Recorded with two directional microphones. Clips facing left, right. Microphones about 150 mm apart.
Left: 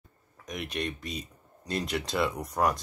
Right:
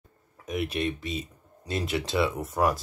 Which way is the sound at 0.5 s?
5° right (ahead or behind).